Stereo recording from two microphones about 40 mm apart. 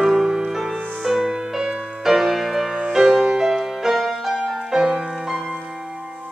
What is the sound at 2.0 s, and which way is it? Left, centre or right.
Music, centre.